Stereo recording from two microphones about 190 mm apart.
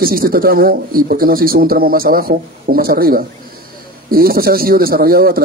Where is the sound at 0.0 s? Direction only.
50° right (ahead or behind).